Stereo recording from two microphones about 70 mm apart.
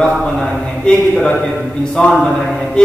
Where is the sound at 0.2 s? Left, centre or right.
Centre.